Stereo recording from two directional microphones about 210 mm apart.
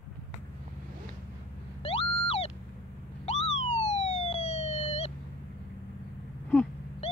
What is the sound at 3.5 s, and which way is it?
Police car, 30° left (ahead or behind).